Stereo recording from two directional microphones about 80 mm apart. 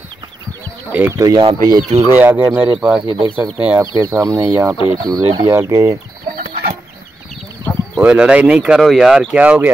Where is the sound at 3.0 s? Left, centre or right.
Right.